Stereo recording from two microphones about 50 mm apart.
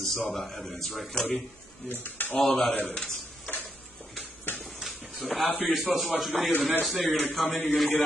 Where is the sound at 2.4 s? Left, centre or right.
Centre.